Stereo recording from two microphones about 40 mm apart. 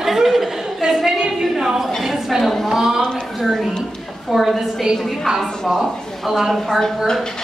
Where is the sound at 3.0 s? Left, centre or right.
Centre.